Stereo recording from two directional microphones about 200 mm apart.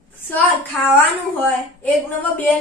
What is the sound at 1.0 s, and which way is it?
Speech, 10° left (ahead or behind).